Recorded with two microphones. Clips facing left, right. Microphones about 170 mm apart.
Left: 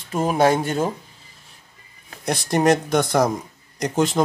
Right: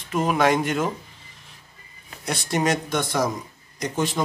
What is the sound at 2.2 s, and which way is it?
Speech, 50° left (ahead or behind).